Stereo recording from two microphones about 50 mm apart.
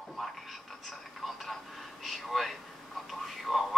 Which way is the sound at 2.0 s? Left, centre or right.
Centre.